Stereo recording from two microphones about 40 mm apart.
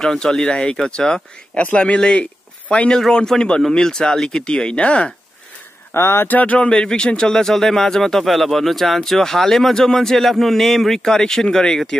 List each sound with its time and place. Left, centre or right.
0.0 s speech: centre
1.6 s speech: left
2.7 s speech: left
4.5 s speech: left
5.9 s speech: left
6.2 s speech: left
6.7 s speech: left; by 11.0 s centre
11.0 s speech: centre